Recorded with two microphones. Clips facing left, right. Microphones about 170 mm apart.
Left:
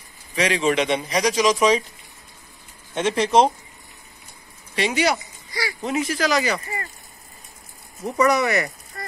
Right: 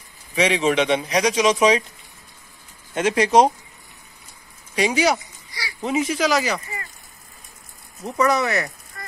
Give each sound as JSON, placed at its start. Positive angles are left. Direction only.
{"t": 0.3, "sound": "speech", "side_deg": -5}
{"t": 2.9, "sound": "speech", "side_deg": -5}
{"t": 4.8, "sound": "speech", "side_deg": 0}
{"t": 5.5, "sound": "speech", "side_deg": 55}
{"t": 5.8, "sound": "speech", "side_deg": 0}
{"t": 8.2, "sound": "speech", "side_deg": 0}
{"t": 9.0, "sound": "a sound", "side_deg": 35}